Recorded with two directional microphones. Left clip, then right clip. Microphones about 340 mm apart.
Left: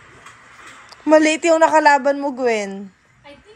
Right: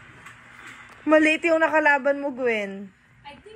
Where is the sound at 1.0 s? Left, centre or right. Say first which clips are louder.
Left 5 dB; centre.